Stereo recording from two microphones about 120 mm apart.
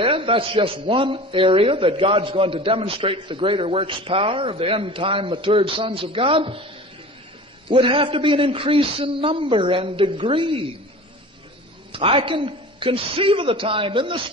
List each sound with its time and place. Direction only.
0.0 s a man's voice: 50° right (ahead or behind)
11.9 s a man's voice: 50° right (ahead or behind)